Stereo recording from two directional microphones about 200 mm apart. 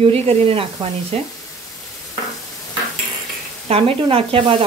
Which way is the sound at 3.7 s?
25° right (ahead or behind).